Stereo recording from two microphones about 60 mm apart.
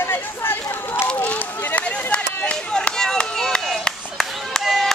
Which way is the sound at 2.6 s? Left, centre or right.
Centre.